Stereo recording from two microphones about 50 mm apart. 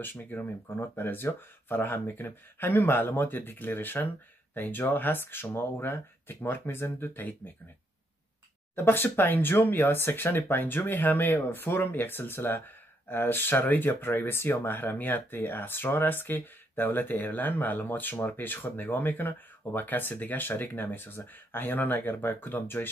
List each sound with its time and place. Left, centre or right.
0.0 s speech: left
8.7 s speech: left